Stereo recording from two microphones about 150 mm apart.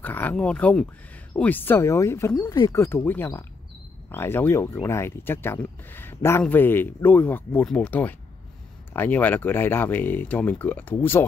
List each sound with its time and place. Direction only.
0.0 s speech: 10° left (ahead or behind)